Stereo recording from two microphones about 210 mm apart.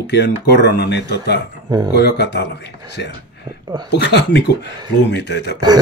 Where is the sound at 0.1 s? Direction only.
50° left (ahead or behind).